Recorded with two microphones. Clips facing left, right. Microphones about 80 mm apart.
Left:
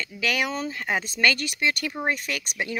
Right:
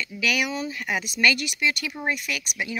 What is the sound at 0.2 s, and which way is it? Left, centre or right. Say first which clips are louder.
Speech: even; left.